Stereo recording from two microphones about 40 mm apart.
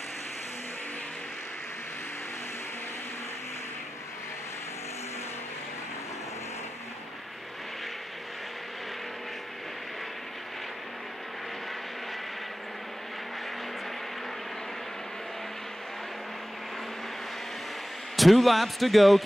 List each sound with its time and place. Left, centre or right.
18.1 s speech: centre